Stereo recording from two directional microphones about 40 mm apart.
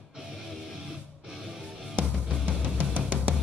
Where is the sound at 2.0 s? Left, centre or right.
Right.